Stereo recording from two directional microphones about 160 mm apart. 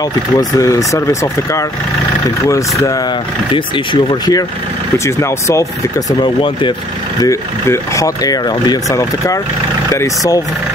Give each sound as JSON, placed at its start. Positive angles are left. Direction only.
{"t": 0.4, "sound": "speech", "side_deg": 20}
{"t": 3.5, "sound": "speech", "side_deg": 30}
{"t": 7.2, "sound": "speech", "side_deg": 20}